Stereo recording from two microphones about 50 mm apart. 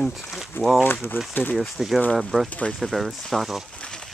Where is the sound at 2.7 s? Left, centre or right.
Centre.